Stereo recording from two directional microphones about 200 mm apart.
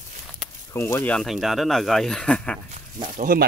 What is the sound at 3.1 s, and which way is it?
Speech, 45° right (ahead or behind).